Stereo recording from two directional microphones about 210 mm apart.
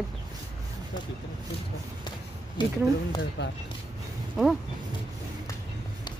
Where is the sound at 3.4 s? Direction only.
55° left (ahead or behind).